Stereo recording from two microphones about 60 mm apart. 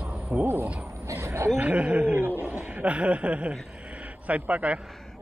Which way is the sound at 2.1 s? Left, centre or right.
Right.